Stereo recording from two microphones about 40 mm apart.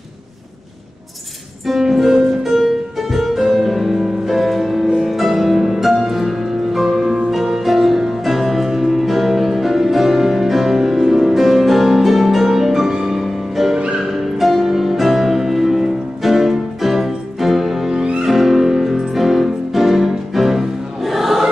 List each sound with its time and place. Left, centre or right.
1.7 s music: centre
13.7 s music: right
14.4 s music: centre